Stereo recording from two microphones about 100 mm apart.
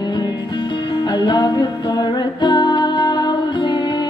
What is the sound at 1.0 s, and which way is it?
Music, 45° left (ahead or behind).